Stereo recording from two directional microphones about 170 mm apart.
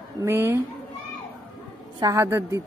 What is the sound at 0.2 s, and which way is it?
Speech, 15° right (ahead or behind).